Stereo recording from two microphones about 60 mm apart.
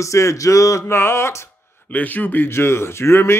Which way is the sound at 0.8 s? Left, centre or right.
Left.